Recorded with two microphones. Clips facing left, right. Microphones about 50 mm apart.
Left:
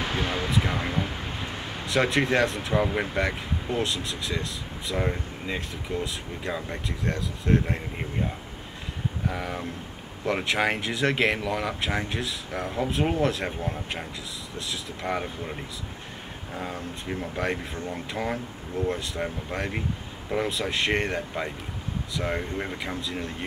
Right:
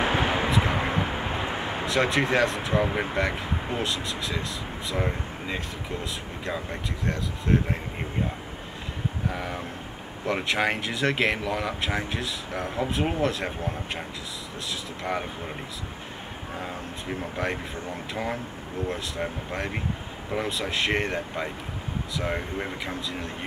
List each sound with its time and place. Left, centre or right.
0.0 s a sound: right
1.9 s speech: centre
9.3 s speech: centre
16.5 s speech: centre